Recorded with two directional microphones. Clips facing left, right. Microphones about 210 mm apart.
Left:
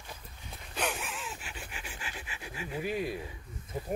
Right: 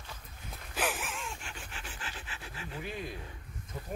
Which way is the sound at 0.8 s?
Centre (ahead or behind).